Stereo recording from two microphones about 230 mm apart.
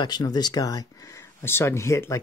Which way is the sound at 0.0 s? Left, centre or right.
Centre.